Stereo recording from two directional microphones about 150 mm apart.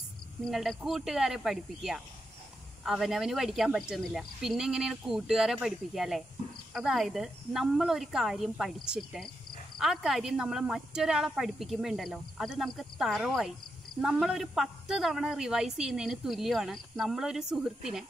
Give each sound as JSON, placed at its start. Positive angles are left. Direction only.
{"t": 0.5, "sound": "a woman's voice", "side_deg": 0}